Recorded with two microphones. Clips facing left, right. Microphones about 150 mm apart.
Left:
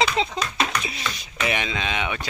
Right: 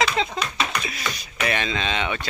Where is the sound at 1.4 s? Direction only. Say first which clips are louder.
Right 1 dB; 15° left (ahead or behind).